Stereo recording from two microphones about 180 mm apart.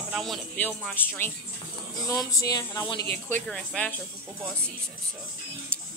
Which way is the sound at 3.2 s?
5° left (ahead or behind).